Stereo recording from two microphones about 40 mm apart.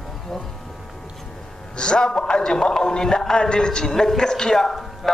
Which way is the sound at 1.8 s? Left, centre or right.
Left.